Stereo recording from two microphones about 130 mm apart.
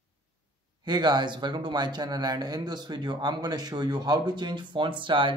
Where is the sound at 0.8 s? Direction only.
35° right (ahead or behind).